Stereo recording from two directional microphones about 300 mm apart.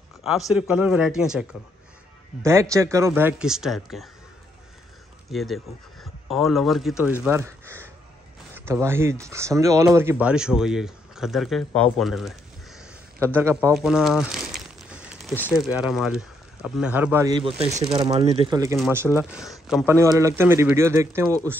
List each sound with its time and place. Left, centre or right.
0.2 s speech: centre
5.3 s speech: centre